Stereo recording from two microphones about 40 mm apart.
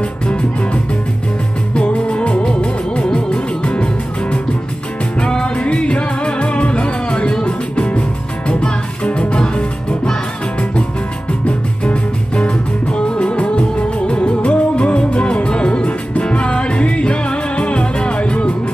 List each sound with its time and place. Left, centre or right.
1.8 s music: left
11.4 s music: left